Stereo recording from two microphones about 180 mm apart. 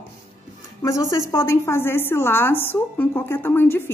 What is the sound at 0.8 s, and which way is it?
A woman's voice, 15° left (ahead or behind).